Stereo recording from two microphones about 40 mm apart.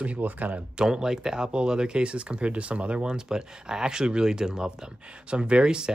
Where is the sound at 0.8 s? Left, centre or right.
Centre.